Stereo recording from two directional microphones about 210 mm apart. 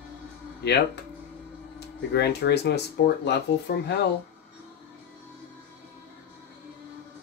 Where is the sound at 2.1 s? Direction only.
50° left (ahead or behind).